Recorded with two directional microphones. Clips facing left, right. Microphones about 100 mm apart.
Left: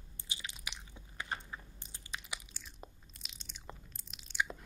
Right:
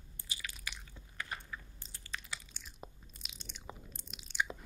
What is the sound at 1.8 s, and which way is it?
Biting, 20° left (ahead or behind).